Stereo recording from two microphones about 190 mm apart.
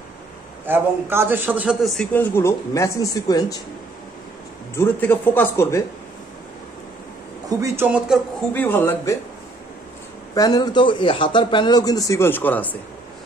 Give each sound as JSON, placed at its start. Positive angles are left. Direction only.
{"t": 0.7, "sound": "a man's voice", "side_deg": -10}
{"t": 4.7, "sound": "a man's voice", "side_deg": 10}
{"t": 7.4, "sound": "a man's voice", "side_deg": -15}
{"t": 8.5, "sound": "a man's voice", "side_deg": 10}
{"t": 10.3, "sound": "a man's voice", "side_deg": 20}